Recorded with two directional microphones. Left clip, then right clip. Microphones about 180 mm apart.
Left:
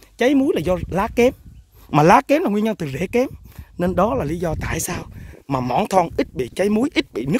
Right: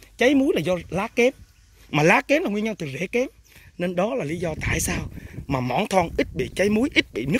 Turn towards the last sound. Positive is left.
turn(degrees=35)  # may be behind; listen again after turning